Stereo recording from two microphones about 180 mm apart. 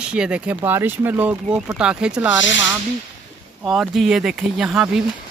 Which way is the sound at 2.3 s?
90° left.